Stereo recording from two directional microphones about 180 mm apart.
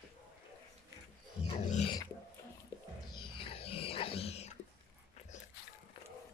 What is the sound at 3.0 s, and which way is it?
Wild animals, 25° left (ahead or behind).